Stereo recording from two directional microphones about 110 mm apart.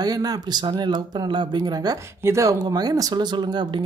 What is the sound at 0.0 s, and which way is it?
Speech, 35° right (ahead or behind).